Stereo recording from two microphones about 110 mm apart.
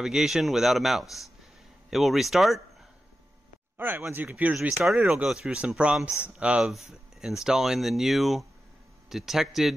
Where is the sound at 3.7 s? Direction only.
20° right (ahead or behind).